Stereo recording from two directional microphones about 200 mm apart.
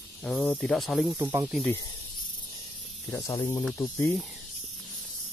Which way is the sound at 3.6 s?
5° left (ahead or behind).